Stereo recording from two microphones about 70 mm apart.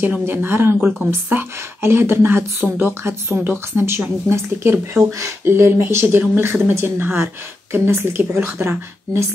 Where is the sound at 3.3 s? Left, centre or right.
Right.